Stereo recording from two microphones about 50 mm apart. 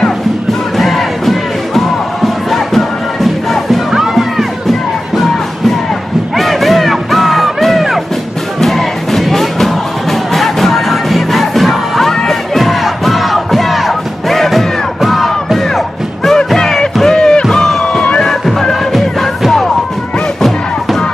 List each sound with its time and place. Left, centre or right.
0.7 s crowd: centre
3.6 s music: centre
6.3 s music: centre
15.0 s crowd: centre
16.3 s music: centre
18.0 s music: centre
18.4 s music: centre